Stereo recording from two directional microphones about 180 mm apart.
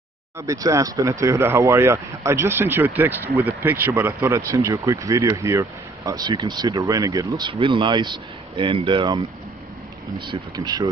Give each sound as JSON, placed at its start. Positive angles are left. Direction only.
{"t": 0.4, "sound": "speech", "side_deg": -20}
{"t": 10.2, "sound": "speech", "side_deg": -20}